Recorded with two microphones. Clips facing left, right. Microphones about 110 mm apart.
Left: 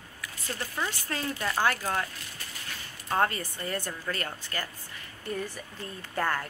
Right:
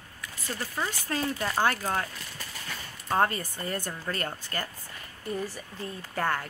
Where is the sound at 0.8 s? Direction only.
20° right (ahead or behind).